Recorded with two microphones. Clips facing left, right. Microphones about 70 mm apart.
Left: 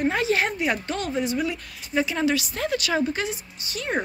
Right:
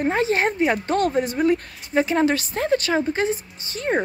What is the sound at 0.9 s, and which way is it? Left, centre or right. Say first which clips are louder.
Speech: right 5 dB; right.